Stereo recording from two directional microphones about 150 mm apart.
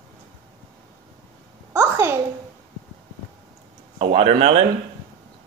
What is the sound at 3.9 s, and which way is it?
Speech, 40° right (ahead or behind).